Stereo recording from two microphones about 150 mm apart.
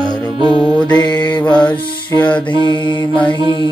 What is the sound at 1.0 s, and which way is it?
Mantra, 30° left (ahead or behind).